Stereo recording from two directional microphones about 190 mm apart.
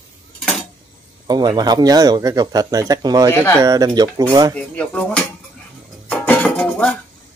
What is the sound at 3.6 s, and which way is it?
Speech, 20° right (ahead or behind).